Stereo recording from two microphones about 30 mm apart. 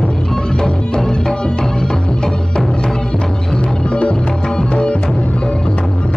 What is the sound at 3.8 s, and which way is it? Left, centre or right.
Music, left.